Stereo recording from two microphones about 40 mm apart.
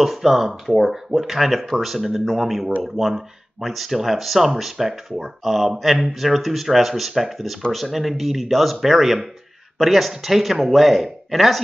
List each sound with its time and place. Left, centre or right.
0.0 s speech: centre